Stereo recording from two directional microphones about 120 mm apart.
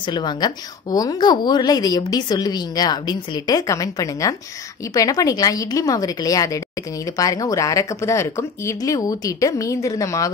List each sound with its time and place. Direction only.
0.0 s a woman's voice: 40° left (ahead or behind)